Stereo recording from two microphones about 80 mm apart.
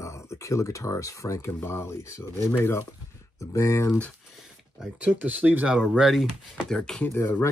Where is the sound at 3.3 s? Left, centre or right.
Left.